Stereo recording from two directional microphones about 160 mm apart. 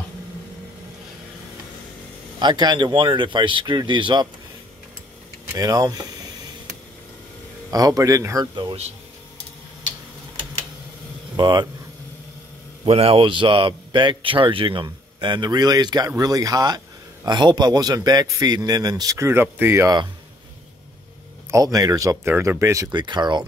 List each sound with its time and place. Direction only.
2.3 s a man's voice: 25° right (ahead or behind)
5.5 s a man's voice: 25° right (ahead or behind)
7.7 s a man's voice: 20° right (ahead or behind)
11.3 s speech: 30° right (ahead or behind)
12.8 s a man's voice: 40° right (ahead or behind); by 20.1 s 20° right (ahead or behind)
21.5 s a man's voice: 20° right (ahead or behind)